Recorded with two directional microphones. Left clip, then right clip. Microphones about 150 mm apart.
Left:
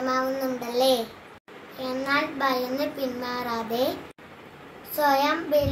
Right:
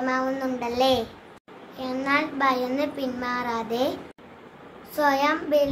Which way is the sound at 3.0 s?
10° right (ahead or behind).